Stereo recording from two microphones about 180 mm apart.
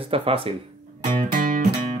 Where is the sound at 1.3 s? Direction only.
50° right (ahead or behind).